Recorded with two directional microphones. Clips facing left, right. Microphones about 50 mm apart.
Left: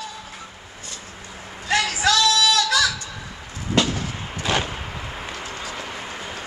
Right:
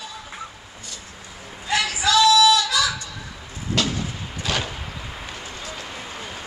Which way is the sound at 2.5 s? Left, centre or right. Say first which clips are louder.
Left 2 dB; left.